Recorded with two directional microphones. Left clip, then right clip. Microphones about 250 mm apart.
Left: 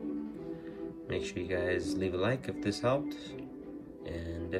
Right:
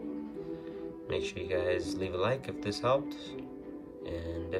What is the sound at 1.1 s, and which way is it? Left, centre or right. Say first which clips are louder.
Speech: right 2 dB; centre.